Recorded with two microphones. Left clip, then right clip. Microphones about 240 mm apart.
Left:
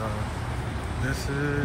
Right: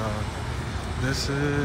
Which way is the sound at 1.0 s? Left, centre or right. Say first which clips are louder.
Right 3 dB; centre.